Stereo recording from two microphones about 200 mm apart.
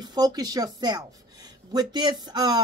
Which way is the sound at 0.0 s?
20° right (ahead or behind).